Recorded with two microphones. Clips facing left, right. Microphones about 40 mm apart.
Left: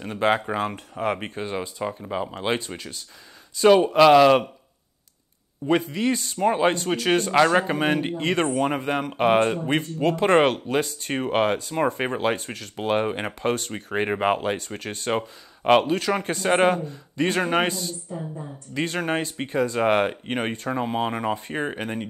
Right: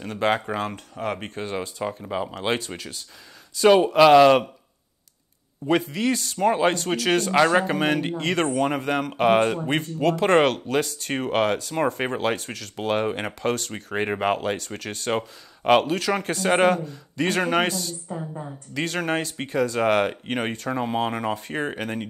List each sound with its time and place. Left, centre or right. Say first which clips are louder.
0.0 s speech: left 1 dB; centre
0.9 s speech: left 3 dB; left
1.3 s speech: even; centre
5.7 s speech: even; centre
7.7 s speech: even; centre
11.7 s speech: even; centre